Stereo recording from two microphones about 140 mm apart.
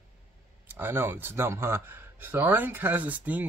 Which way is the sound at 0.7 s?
15° right (ahead or behind).